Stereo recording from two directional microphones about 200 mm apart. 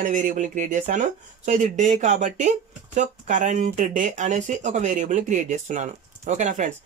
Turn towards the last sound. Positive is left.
turn(degrees=-35)  # may be behind; listen again after turning